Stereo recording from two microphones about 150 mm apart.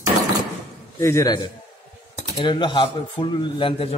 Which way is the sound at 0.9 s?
20° left (ahead or behind).